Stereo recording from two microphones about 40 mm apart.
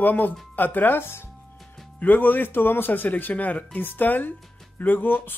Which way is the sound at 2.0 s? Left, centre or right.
Left.